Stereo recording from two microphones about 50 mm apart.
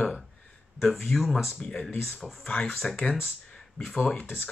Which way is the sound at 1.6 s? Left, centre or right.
Centre.